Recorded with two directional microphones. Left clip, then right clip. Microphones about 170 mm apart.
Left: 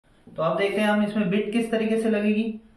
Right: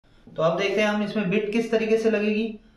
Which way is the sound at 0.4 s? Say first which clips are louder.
Right 1 dB; 15° right (ahead or behind).